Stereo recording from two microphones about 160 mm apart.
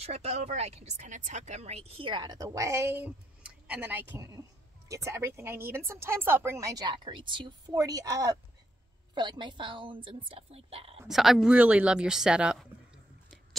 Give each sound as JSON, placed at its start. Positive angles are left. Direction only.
{"t": 0.0, "sound": "a woman's voice", "side_deg": -40}
{"t": 11.1, "sound": "speech", "side_deg": 0}